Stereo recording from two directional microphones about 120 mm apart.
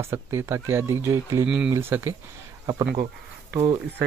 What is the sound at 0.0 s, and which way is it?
Speech, 20° right (ahead or behind).